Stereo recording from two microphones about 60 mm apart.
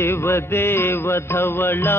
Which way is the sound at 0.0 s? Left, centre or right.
Left.